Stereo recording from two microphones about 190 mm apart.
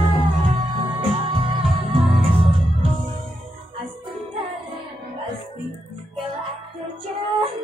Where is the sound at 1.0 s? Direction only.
30° right (ahead or behind).